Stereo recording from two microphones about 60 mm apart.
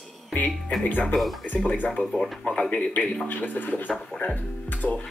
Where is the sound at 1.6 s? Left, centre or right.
Left.